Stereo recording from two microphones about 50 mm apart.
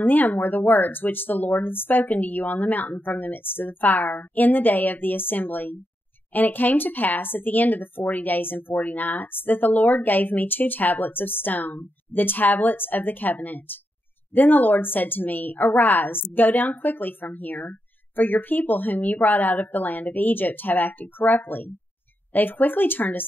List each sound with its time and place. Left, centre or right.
0.0 s speech: left